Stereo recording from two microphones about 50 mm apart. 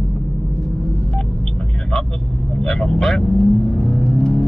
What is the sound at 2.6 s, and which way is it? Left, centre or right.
Vehicle, centre.